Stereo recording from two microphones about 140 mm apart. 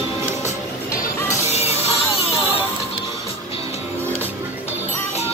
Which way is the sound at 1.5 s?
50° left (ahead or behind).